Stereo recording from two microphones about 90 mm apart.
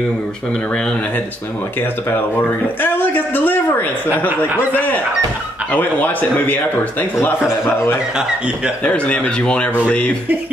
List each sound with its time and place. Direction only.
0.7 s a man's voice: 10° left (ahead or behind)
2.8 s a man's voice: 20° left (ahead or behind)
8.2 s a man's voice: 10° right (ahead or behind)
8.8 s a man's voice: 15° left (ahead or behind)